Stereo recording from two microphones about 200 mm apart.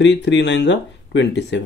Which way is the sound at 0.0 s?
60° left (ahead or behind).